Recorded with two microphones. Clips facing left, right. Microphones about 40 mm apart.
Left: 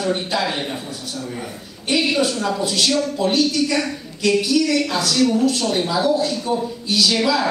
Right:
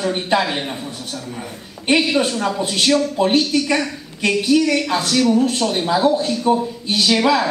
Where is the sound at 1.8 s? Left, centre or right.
Right.